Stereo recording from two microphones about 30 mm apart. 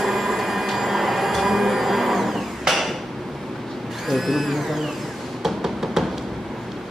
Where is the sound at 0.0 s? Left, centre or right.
Centre.